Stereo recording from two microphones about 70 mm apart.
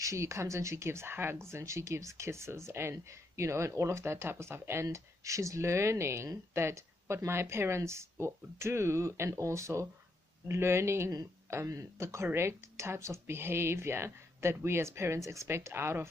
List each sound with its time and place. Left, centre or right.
0.0 s speech: right
4.8 s speech: right